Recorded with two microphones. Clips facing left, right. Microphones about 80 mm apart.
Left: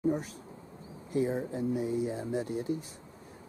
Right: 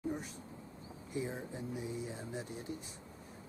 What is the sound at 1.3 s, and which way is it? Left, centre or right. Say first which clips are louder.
Speech: left 10 dB; centre.